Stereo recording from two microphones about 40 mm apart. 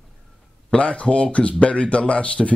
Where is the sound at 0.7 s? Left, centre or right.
Left.